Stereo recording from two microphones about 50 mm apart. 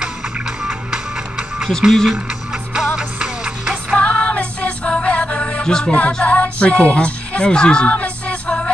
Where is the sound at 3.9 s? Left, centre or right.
Left.